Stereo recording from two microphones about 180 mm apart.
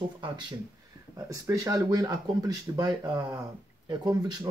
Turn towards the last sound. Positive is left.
turn(degrees=-20)  # may be behind; listen again after turning